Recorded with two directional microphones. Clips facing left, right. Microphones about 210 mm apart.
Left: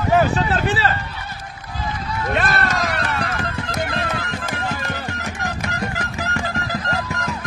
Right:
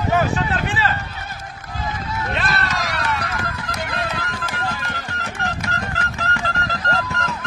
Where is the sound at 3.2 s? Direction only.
25° left (ahead or behind).